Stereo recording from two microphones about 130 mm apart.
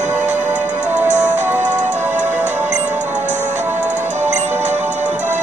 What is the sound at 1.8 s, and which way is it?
Music, 70° right (ahead or behind).